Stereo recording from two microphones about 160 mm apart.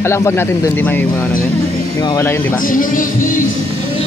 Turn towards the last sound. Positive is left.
turn(degrees=60)  # may be behind; listen again after turning